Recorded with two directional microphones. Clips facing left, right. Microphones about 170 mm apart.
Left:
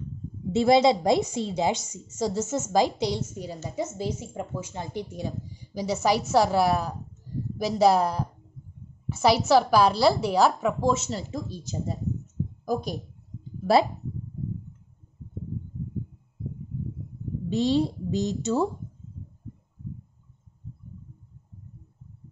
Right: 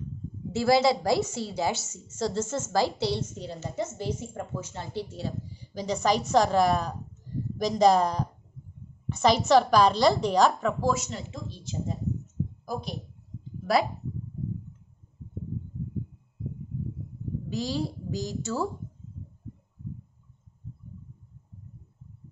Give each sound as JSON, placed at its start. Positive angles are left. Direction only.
{"t": 0.5, "sound": "a woman's voice", "side_deg": 20}
{"t": 10.8, "sound": "a woman's voice", "side_deg": 20}
{"t": 11.1, "sound": "speech", "side_deg": 35}
{"t": 17.5, "sound": "a woman's voice", "side_deg": 25}